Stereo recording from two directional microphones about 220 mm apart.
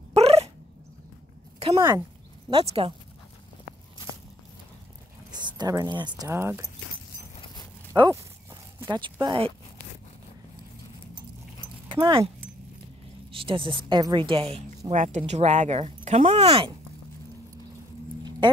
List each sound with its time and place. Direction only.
0.1 s dog: 30° right (ahead or behind)
1.6 s a woman's voice: 20° right (ahead or behind)
5.3 s speech: 20° right (ahead or behind)
7.3 s dog: 20° left (ahead or behind)
7.9 s speech: 15° right (ahead or behind)
11.9 s speech: 20° right (ahead or behind)
13.3 s a woman's voice: 25° right (ahead or behind)
18.4 s a sound: 20° right (ahead or behind)